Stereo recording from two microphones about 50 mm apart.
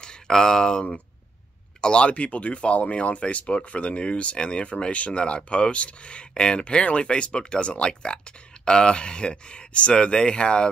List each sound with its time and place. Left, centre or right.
0.3 s speech: centre